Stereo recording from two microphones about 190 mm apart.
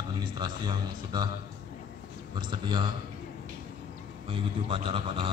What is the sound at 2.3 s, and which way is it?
Speech, 25° right (ahead or behind).